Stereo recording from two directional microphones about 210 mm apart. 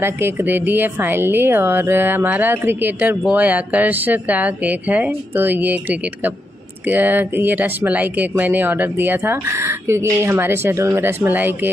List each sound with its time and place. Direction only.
0.0 s speech: 10° right (ahead or behind)